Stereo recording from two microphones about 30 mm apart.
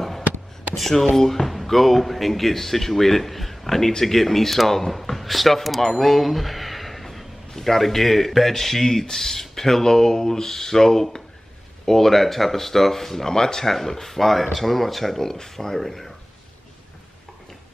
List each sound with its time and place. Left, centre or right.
0.7 s speech: centre
15.1 s speech: centre